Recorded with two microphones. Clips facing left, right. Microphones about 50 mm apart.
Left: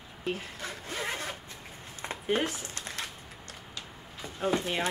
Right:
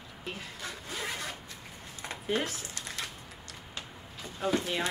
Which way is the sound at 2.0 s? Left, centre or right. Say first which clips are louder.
Left 2 dB; left.